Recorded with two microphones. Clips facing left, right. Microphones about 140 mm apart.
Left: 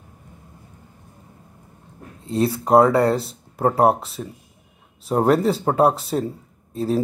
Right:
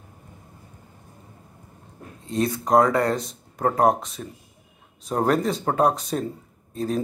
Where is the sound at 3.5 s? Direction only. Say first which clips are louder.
Left 3 dB; 10° left (ahead or behind).